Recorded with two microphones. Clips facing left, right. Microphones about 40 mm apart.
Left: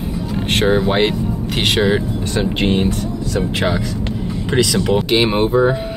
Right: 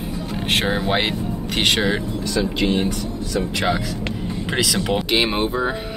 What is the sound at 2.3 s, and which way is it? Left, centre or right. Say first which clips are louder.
Speech: left 3 dB; left.